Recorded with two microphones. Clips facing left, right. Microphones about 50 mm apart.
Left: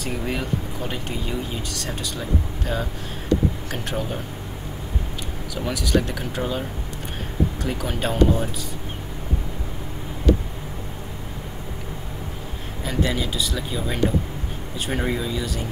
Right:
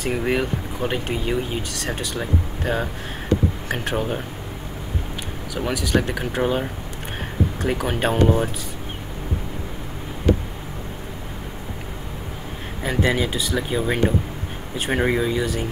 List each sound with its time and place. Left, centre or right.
0.0 s speech: right
5.5 s speech: centre
6.4 s speech: right
12.8 s speech: right